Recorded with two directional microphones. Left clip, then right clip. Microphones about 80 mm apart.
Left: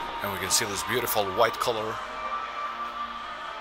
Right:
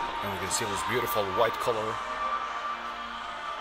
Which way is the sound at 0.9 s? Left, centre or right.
Centre.